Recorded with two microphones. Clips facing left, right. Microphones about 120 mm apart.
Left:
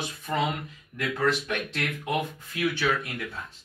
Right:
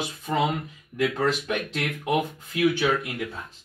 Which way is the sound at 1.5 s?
15° right (ahead or behind).